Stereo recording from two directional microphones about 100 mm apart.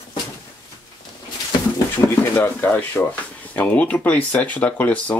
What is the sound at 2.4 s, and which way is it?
Speech, 15° left (ahead or behind).